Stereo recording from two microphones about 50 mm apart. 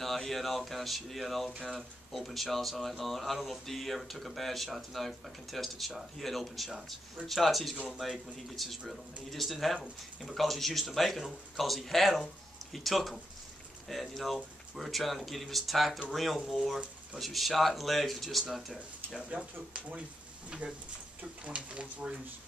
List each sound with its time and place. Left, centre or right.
0.0 s speech: centre
18.4 s speech: centre
19.3 s speech: right